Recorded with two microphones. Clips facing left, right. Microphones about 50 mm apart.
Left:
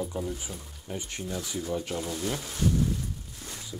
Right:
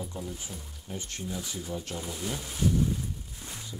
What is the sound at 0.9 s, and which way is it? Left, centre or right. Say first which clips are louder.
Speech: left 3 dB; centre.